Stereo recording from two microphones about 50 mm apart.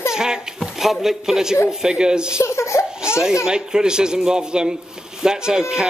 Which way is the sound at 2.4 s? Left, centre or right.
Left.